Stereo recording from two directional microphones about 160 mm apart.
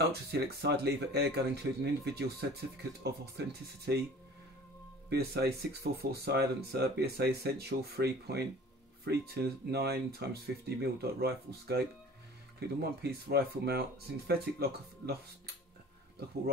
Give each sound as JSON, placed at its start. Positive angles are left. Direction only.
{"t": 0.3, "sound": "speech", "side_deg": -90}
{"t": 5.1, "sound": "speech", "side_deg": -90}